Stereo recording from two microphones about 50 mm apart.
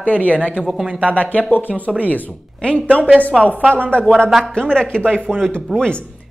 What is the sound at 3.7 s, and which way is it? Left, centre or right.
Speech, left.